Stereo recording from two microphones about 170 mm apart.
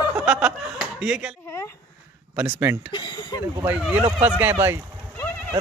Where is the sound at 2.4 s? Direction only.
10° right (ahead or behind).